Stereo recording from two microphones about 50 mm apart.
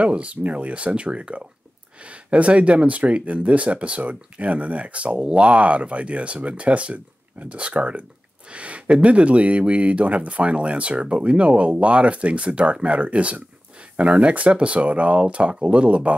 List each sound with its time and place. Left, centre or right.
0.0 s speech: right